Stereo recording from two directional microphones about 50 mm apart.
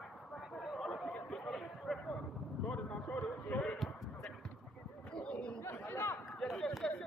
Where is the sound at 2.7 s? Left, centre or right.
Left.